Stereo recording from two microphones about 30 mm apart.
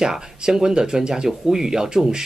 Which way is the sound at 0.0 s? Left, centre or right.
Right.